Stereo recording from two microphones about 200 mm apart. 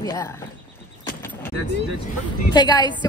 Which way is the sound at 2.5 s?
20° left (ahead or behind).